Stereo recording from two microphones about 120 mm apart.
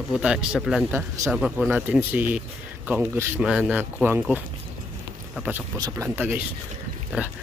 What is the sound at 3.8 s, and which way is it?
Speech, 15° right (ahead or behind).